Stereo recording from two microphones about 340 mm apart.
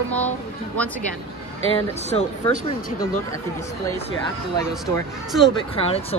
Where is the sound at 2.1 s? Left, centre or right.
Centre.